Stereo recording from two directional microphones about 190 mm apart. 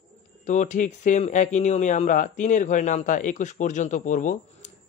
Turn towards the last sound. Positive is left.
turn(degrees=40)  # may be behind; listen again after turning